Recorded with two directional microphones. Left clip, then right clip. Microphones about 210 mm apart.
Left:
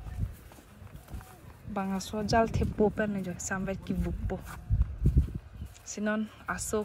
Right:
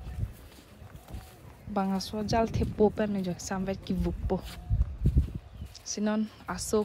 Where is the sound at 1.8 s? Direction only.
5° right (ahead or behind).